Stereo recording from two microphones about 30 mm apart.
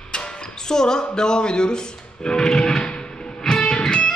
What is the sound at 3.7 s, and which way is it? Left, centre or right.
Music, left.